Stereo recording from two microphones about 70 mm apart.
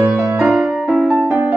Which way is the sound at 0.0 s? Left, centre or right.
Right.